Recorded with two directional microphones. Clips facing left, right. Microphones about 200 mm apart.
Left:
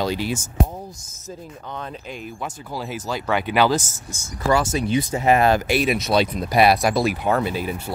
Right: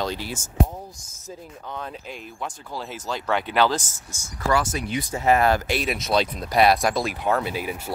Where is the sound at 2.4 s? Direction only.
5° left (ahead or behind).